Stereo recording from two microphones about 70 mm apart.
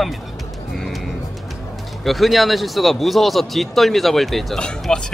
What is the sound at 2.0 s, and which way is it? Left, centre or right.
Speech, centre.